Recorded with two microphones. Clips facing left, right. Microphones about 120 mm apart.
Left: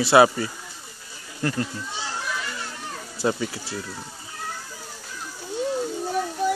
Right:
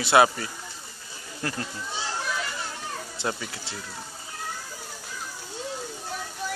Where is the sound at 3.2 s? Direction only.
5° left (ahead or behind).